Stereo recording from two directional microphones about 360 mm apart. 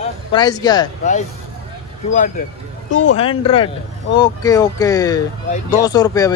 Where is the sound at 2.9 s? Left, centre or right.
Left.